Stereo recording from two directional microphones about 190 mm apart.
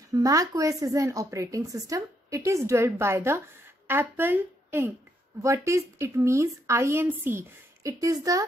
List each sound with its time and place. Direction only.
0.1 s speech: 20° right (ahead or behind)